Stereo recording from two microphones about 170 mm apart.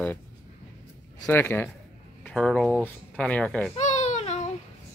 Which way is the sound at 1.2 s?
10° left (ahead or behind).